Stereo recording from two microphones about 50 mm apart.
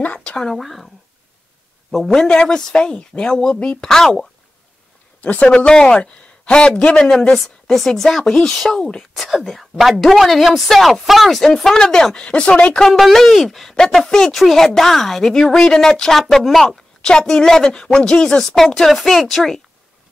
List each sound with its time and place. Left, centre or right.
0.2 s a sound: centre
0.5 s a woman's voice: centre
2.0 s speech: centre
5.2 s a man's voice: left
7.3 s speech: centre
9.1 s a woman's voice: centre; by 12.8 s left
13.0 s a woman's voice: centre
17.0 s a woman's voice: centre